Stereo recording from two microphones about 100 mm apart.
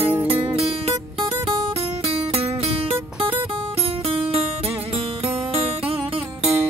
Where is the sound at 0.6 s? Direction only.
90° right.